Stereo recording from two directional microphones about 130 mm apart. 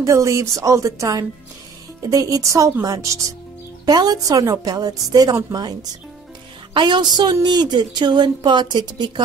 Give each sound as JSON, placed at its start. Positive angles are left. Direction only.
{"t": 0.0, "sound": "a woman's voice", "side_deg": -25}